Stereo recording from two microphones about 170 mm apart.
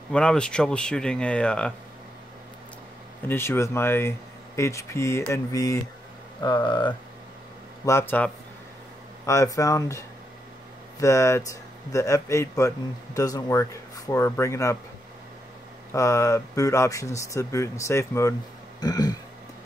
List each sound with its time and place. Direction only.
0.1 s speech: 5° left (ahead or behind)
3.3 s speech: 15° left (ahead or behind)
7.8 s speech: 15° left (ahead or behind)
15.9 s speech: 15° left (ahead or behind)
18.8 s a sound: 25° left (ahead or behind)